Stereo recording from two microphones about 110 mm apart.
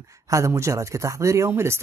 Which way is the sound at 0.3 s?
25° right (ahead or behind).